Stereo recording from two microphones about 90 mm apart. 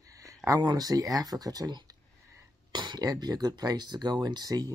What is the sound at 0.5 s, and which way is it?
Speech, 45° right (ahead or behind).